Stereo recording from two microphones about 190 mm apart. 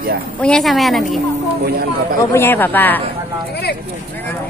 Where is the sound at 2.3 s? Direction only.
10° left (ahead or behind).